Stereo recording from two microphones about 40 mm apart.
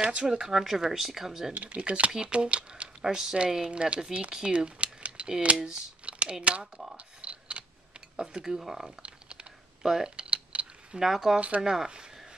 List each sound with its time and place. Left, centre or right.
0.0 s speech: centre
1.5 s speech: right
3.1 s speech: centre
3.7 s speech: right
6.0 s a sound: right
6.6 s speech: centre
7.0 s camera: right
8.2 s speech: centre
9.0 s typing: right
10.9 s speech: centre
11.3 s speech: right
11.6 s speech: centre